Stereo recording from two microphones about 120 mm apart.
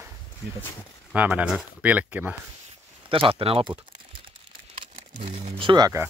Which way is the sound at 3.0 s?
45° right (ahead or behind).